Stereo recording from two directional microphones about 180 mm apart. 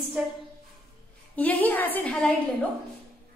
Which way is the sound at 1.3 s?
10° left (ahead or behind).